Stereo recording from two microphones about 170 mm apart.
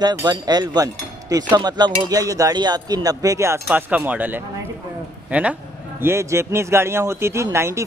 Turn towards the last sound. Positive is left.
turn(degrees=-15)  # may be behind; listen again after turning